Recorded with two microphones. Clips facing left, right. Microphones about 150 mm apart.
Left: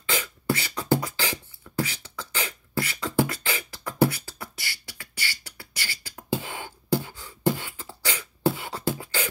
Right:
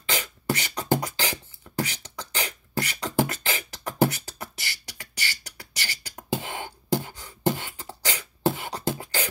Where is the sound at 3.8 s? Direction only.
20° right (ahead or behind).